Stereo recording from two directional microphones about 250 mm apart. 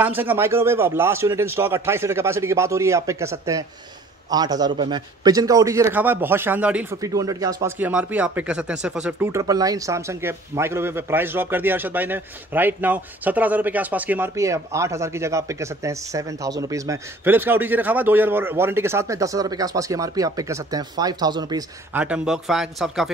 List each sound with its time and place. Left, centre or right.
0.0 s a man's voice: centre